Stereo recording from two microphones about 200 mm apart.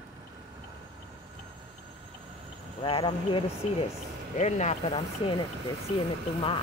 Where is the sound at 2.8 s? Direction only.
25° left (ahead or behind).